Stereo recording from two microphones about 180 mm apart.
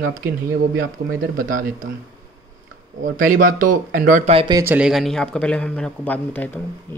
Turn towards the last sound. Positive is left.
turn(degrees=10)  # may be behind; listen again after turning